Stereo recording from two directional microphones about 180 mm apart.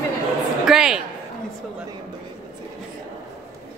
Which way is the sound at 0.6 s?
5° right (ahead or behind).